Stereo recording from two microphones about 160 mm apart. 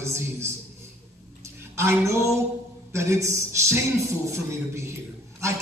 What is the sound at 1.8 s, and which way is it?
A man's voice, 15° right (ahead or behind).